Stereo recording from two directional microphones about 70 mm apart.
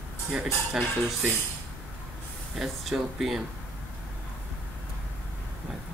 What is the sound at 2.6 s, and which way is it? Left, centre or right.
Speech, centre.